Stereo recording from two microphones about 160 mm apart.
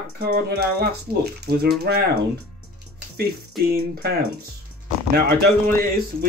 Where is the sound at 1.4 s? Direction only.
90° right.